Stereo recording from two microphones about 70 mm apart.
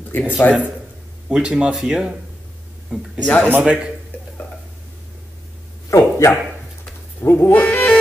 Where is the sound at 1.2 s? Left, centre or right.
Centre.